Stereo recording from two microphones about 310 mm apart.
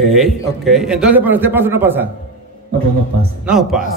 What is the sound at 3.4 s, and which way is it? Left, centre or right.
Speech, centre.